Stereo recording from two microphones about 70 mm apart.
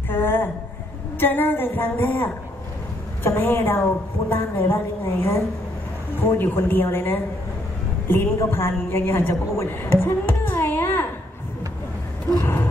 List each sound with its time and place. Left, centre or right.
0.1 s a sound: left
3.3 s a woman's voice: left
8.4 s a woman's voice: left
12.4 s speech: left